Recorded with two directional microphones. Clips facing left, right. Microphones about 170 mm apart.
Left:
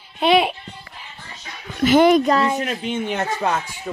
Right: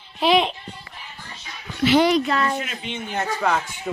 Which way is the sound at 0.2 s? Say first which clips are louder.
Left 2 dB; centre (ahead or behind).